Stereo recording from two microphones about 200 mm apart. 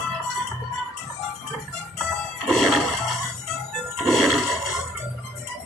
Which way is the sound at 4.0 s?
Centre (ahead or behind).